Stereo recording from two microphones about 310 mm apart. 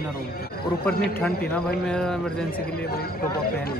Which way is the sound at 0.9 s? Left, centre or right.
Centre.